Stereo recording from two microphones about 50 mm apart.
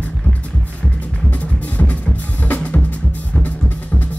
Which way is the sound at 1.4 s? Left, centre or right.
Left.